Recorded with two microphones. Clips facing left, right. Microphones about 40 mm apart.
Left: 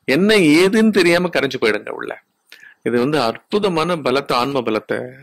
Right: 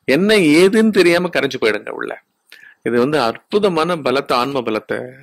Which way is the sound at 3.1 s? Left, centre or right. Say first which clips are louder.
Right 1 dB; centre.